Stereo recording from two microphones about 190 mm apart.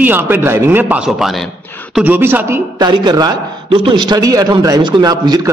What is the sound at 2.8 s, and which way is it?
A man's voice, 20° right (ahead or behind).